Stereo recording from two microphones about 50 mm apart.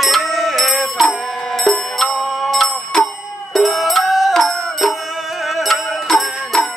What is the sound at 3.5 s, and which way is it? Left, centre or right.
Music, centre.